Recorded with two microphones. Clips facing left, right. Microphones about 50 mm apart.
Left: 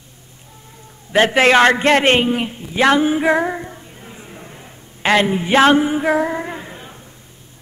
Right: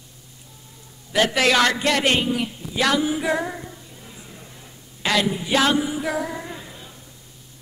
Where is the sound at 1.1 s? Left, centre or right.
Left.